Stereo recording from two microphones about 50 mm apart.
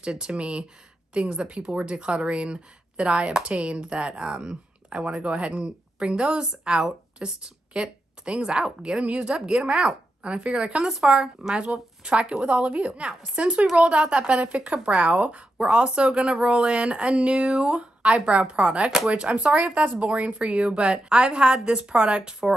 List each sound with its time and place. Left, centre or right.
0.0 s speech: centre
10.9 s speech: centre
11.1 s speech: centre